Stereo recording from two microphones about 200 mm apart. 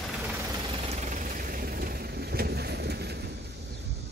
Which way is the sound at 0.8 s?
35° right (ahead or behind).